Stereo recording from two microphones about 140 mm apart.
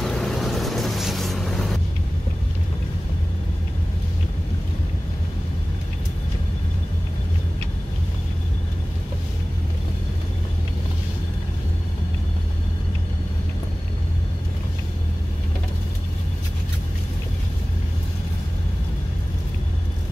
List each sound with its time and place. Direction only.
0.0 s vehicle: 5° left (ahead or behind)